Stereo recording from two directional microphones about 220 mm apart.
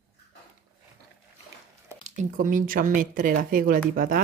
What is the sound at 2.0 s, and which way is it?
Speech, 35° right (ahead or behind).